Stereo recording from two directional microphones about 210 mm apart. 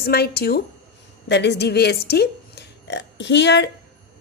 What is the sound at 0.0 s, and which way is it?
A woman's voice, 50° left (ahead or behind).